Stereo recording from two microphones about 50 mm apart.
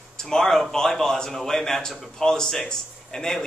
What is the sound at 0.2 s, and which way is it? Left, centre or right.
A man's voice, centre.